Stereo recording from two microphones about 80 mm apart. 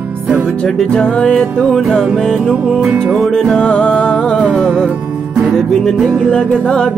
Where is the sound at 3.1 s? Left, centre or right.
Centre.